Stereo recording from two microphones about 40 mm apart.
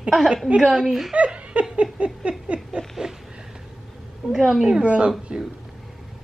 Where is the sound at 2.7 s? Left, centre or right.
Centre.